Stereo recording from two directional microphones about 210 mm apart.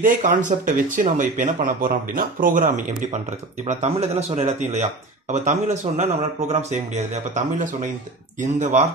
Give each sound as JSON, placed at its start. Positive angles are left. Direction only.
{"t": 0.0, "sound": "speech", "side_deg": -35}